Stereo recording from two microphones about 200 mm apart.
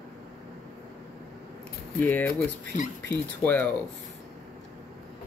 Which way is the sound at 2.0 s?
10° left (ahead or behind).